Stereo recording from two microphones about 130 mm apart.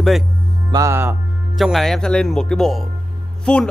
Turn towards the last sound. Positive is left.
turn(degrees=5)  # may be behind; listen again after turning